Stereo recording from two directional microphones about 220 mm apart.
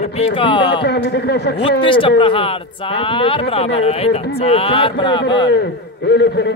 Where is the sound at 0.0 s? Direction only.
25° left (ahead or behind).